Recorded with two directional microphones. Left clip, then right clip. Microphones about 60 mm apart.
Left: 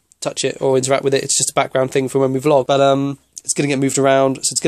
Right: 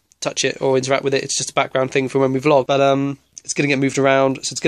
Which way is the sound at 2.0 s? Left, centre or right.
Left.